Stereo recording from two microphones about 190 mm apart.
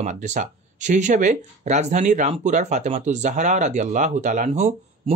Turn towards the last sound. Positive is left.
turn(degrees=-40)  # may be behind; listen again after turning